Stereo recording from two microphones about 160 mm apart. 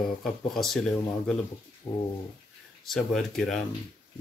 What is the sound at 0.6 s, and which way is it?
Speech, 5° left (ahead or behind).